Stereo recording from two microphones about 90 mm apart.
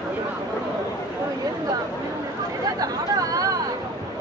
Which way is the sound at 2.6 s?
45° right (ahead or behind).